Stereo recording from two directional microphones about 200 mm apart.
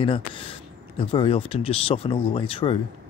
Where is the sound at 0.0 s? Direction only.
25° left (ahead or behind).